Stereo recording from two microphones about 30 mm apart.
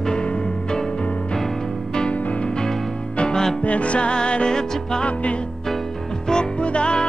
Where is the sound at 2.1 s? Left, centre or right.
Left.